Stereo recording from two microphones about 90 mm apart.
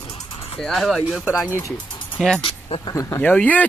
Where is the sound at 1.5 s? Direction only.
30° left (ahead or behind).